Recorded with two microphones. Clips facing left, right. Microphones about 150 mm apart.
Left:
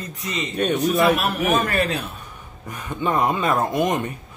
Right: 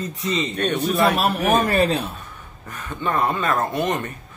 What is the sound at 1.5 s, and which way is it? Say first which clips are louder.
Speech: right 3 dB; 30° right (ahead or behind).